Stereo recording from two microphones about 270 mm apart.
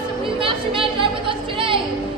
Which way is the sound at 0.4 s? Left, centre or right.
Centre.